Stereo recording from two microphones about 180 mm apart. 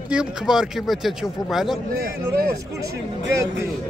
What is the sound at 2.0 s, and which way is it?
Speech, 55° right (ahead or behind).